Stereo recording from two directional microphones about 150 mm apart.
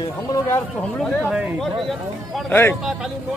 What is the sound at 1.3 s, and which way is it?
Speech, 10° right (ahead or behind).